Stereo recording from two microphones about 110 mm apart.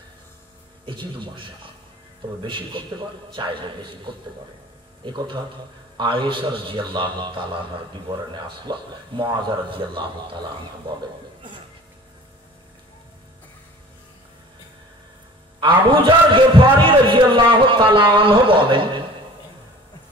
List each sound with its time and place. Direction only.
0.8 s a man's voice: 50° right (ahead or behind)
5.0 s a man's voice: 45° right (ahead or behind)
15.6 s a man's voice: 50° right (ahead or behind)